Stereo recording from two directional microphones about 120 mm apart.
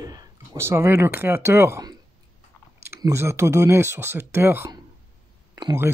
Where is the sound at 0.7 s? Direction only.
20° right (ahead or behind).